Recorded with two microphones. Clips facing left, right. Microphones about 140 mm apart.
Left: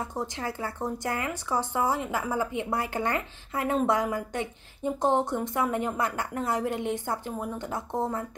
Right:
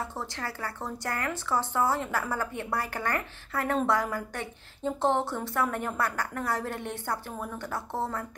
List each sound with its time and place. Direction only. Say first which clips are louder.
0.0 s a woman's voice: left 3 dB; 15° left (ahead or behind)